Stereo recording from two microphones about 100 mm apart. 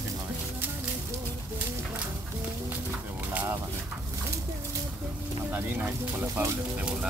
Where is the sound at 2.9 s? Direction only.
15° right (ahead or behind).